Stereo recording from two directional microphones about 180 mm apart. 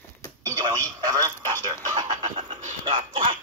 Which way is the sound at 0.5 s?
20° right (ahead or behind).